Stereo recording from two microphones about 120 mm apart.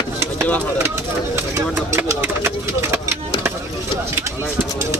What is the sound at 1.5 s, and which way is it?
Speech, 20° right (ahead or behind).